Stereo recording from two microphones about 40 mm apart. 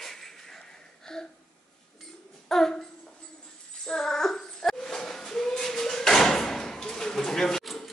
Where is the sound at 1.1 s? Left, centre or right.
Centre.